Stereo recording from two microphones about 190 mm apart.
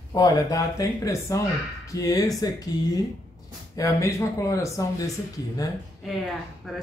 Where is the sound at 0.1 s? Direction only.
20° left (ahead or behind).